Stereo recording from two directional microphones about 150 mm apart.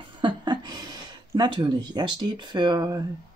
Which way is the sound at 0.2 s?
30° right (ahead or behind).